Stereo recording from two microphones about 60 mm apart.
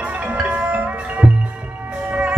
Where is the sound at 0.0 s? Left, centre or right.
Right.